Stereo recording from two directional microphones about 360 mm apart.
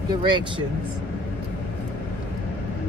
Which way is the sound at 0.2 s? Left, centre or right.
Centre.